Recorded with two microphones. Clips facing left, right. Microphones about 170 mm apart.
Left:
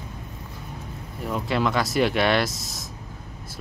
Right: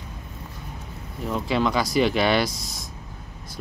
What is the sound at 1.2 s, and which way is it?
Speech, centre (ahead or behind).